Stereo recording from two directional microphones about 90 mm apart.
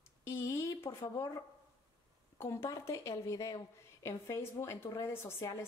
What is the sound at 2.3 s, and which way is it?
Speech, 30° left (ahead or behind).